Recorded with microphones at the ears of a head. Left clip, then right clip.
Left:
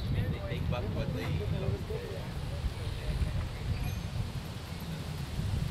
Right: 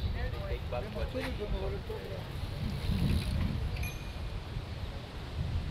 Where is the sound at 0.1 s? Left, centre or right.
Left.